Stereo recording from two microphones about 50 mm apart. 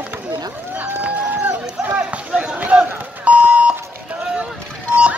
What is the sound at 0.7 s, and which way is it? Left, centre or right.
Speech, right.